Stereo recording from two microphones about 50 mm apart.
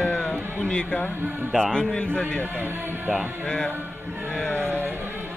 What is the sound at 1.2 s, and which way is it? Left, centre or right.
Speech, right.